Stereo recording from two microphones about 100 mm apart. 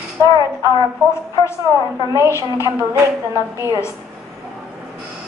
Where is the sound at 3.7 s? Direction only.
25° left (ahead or behind).